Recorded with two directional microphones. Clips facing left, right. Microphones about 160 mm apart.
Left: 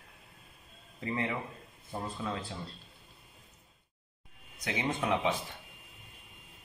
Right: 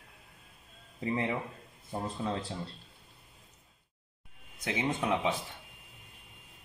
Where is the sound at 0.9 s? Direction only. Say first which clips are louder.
Right 2 dB; 20° right (ahead or behind).